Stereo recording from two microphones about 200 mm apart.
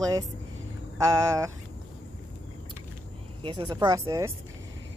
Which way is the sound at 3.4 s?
20° right (ahead or behind).